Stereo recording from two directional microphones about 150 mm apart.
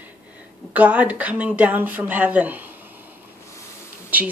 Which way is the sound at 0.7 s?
10° right (ahead or behind).